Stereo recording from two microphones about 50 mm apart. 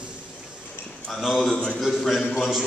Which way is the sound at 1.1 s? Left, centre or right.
Centre.